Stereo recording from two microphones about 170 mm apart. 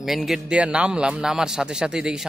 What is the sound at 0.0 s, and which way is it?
A man's voice, centre (ahead or behind).